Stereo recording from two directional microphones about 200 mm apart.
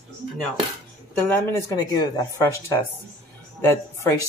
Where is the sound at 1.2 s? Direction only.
15° left (ahead or behind).